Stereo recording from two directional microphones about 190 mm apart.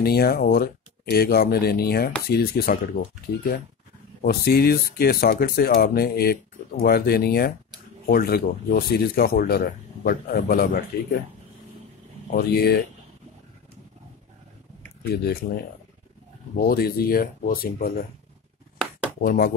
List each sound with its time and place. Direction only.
0.0 s speech: 55° left (ahead or behind)
4.2 s speech: 55° left (ahead or behind)
12.4 s speech: 55° left (ahead or behind)
15.0 s speech: 55° left (ahead or behind)
19.2 s speech: 50° left (ahead or behind)